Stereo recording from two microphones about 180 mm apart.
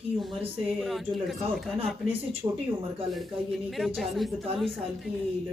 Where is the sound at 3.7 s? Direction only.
Centre (ahead or behind).